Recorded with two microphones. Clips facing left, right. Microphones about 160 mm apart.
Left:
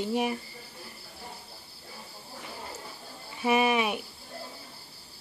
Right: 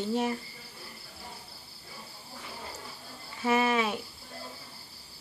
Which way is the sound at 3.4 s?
15° left (ahead or behind).